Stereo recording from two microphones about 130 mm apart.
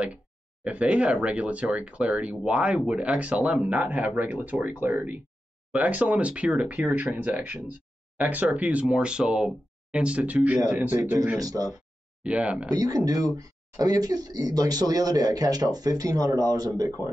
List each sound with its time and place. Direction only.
0.7 s speech: 10° right (ahead or behind)
11.0 s speech: 25° right (ahead or behind)
12.2 s speech: 10° right (ahead or behind)
12.7 s speech: 30° right (ahead or behind)